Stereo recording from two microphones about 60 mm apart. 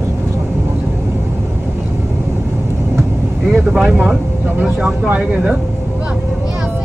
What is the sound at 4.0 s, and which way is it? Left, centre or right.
Speech, right.